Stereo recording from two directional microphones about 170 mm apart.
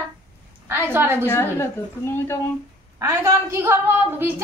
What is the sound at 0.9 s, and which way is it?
Speech, 15° right (ahead or behind).